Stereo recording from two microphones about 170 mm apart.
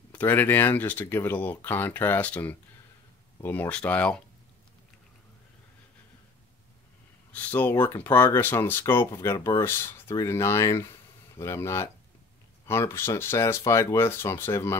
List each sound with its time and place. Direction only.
0.1 s speech: 10° left (ahead or behind)
7.3 s speech: 10° left (ahead or behind)